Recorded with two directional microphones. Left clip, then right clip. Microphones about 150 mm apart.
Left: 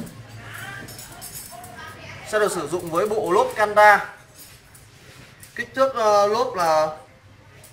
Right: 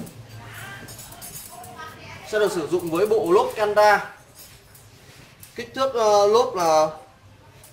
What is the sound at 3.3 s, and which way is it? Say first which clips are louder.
Speech: left 1 dB; 5° right (ahead or behind).